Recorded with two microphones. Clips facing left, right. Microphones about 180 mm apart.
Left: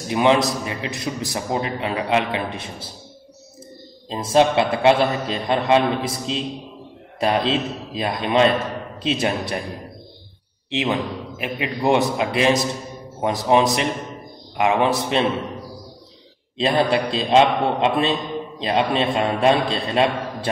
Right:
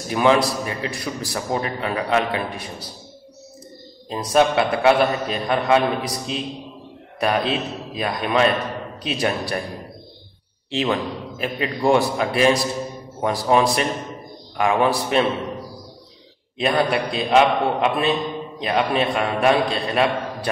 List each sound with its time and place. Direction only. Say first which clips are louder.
0.1 s a man's voice: even; 20° left (ahead or behind)
4.1 s a man's voice: left 1 dB; 25° left (ahead or behind)
10.7 s a man's voice: even; 20° left (ahead or behind)
16.5 s a man's voice: left 1 dB; 25° left (ahead or behind)